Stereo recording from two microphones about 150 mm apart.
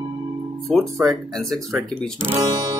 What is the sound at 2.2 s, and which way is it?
Speech, 20° right (ahead or behind).